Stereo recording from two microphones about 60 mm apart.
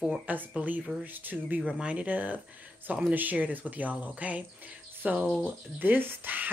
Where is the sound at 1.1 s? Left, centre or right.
Right.